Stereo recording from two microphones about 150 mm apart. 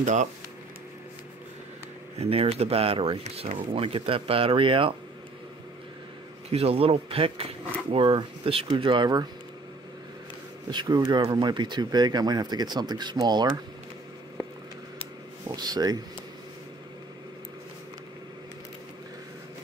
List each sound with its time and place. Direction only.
0.0 s speech: 55° right (ahead or behind)
2.1 s speech: 40° right (ahead or behind)
6.5 s speech: 40° right (ahead or behind)
10.7 s speech: 30° right (ahead or behind)
15.5 s speech: 25° right (ahead or behind)